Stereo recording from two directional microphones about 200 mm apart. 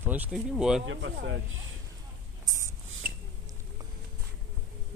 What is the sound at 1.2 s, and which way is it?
Speech, 55° right (ahead or behind).